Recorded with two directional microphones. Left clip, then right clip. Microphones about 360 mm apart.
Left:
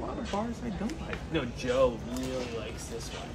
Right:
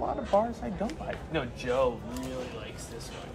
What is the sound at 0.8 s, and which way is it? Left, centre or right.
Speech, centre.